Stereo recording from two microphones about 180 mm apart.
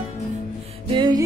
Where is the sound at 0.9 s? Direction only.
25° right (ahead or behind).